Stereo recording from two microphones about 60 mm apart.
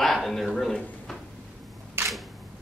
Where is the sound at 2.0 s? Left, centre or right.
Right.